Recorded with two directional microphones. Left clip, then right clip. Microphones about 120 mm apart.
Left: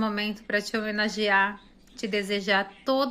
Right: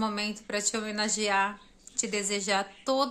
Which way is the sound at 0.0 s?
25° right (ahead or behind).